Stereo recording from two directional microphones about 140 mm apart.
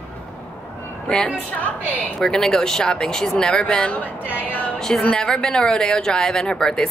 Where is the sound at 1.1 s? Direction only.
5° left (ahead or behind).